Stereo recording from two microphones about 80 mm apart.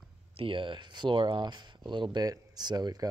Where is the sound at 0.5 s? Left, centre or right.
Right.